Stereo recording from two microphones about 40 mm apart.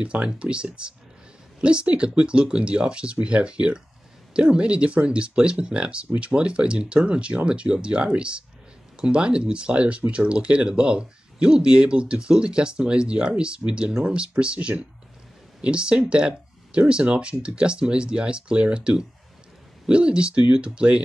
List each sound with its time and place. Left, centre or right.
0.0 s speech: right